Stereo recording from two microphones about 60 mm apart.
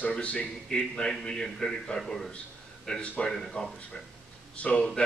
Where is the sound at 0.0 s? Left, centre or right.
Left.